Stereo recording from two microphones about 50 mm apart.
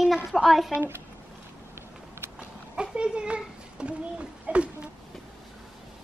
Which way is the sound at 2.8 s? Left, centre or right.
Right.